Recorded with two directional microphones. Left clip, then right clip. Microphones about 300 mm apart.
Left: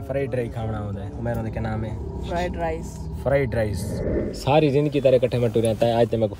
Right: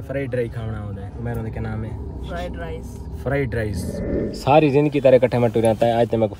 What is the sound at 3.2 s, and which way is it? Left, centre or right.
Speech, centre.